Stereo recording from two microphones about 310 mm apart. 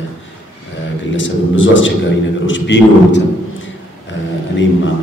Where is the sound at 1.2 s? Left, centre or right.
Left.